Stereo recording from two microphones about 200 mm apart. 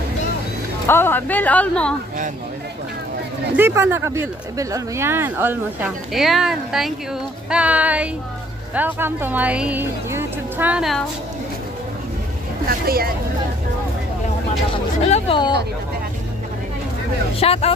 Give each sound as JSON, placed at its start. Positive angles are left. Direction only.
{"t": 0.8, "sound": "speech", "side_deg": 10}
{"t": 3.5, "sound": "speech", "side_deg": -10}
{"t": 12.6, "sound": "speech", "side_deg": -50}
{"t": 14.7, "sound": "speech", "side_deg": 30}
{"t": 17.4, "sound": "speech", "side_deg": 30}